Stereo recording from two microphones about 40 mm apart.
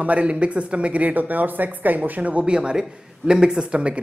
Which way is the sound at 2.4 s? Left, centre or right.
Right.